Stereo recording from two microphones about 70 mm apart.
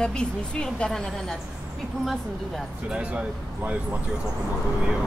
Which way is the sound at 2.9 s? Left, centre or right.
Centre.